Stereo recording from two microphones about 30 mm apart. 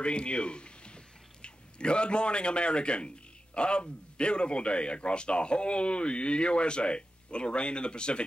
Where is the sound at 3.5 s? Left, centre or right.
Left.